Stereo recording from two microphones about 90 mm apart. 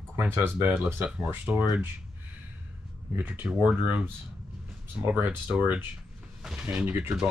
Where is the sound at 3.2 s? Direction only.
15° right (ahead or behind).